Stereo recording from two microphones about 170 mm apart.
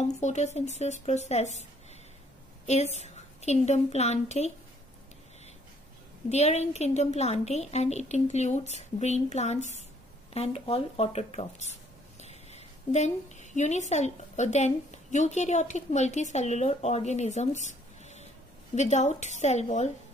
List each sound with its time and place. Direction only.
0.2 s a woman's voice: 45° left (ahead or behind)
2.6 s a woman's voice: 40° left (ahead or behind)
6.2 s a woman's voice: 40° left (ahead or behind)